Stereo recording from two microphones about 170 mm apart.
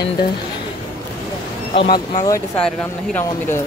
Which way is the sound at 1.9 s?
20° left (ahead or behind).